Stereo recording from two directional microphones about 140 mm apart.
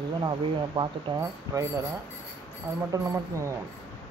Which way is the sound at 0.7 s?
25° right (ahead or behind).